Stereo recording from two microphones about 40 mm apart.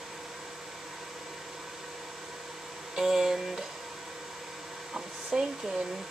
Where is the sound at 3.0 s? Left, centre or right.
Centre.